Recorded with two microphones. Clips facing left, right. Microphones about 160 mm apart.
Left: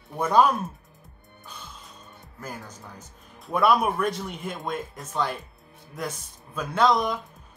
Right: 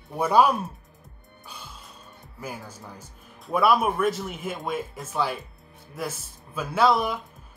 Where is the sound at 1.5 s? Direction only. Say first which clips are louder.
Even; 10° right (ahead or behind).